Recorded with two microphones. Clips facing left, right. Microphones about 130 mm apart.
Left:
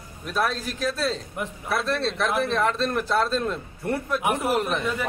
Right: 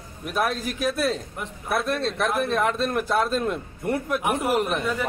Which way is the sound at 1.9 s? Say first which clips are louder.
Even; centre (ahead or behind).